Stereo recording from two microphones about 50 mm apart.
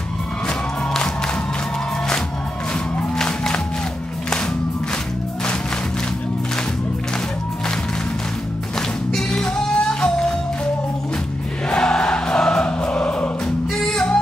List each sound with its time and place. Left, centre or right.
0.5 s music: centre
3.2 s music: centre
8.7 s music: centre
11.7 s music: centre